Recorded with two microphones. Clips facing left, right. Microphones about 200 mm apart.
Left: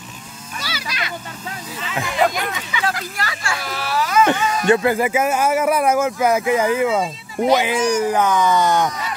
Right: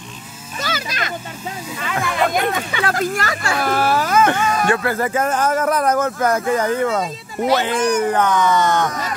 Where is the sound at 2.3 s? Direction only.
55° right (ahead or behind).